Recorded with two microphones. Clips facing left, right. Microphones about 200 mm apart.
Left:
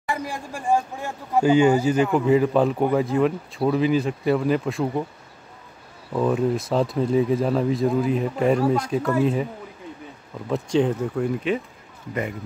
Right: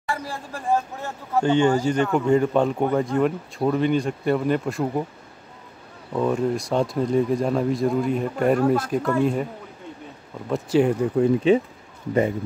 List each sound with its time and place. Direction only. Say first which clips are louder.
0.0 s speech: left 1 dB; 15° left (ahead or behind); by 4.8 s centre (ahead or behind)
6.1 s speech: left 1 dB; centre (ahead or behind)
10.5 s speech: right 1 dB; 5° right (ahead or behind)
11.1 s speech: right 6 dB; 30° right (ahead or behind)